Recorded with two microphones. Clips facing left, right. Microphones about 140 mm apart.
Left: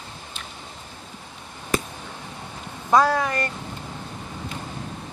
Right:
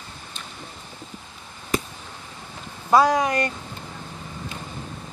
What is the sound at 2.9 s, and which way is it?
Speech, 15° right (ahead or behind).